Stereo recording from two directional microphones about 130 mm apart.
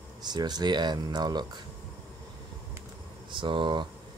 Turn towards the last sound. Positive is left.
turn(degrees=-35)  # may be behind; listen again after turning